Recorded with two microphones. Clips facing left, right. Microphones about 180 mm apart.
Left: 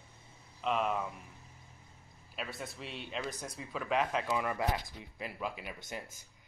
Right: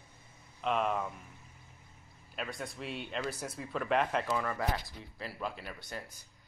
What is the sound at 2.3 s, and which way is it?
Speech, centre (ahead or behind).